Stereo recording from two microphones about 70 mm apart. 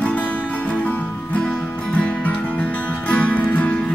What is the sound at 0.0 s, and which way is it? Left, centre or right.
Music, left.